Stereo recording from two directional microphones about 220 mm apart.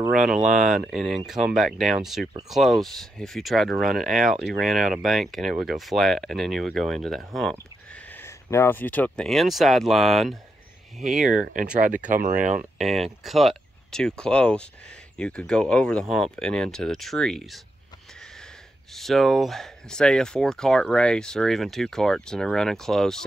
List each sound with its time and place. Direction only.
0.1 s speech: centre (ahead or behind)
11.8 s speech: 35° right (ahead or behind)
12.7 s speech: centre (ahead or behind)
18.9 s speech: centre (ahead or behind)